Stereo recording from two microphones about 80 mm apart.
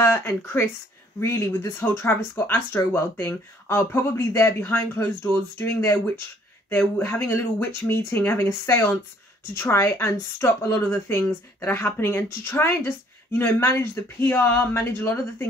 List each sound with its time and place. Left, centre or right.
0.0 s speech: left